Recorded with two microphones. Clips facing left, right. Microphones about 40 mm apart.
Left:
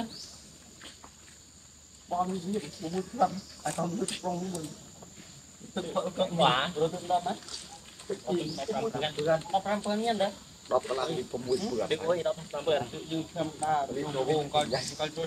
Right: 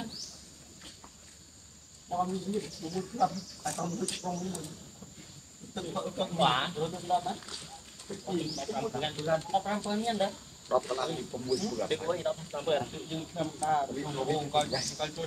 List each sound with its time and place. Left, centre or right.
2.0 s speech: centre
2.6 s speech: left
5.8 s speech: centre
6.7 s speech: centre
12.8 s speech: centre